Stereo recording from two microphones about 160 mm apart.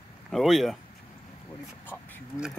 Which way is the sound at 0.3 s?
Centre (ahead or behind).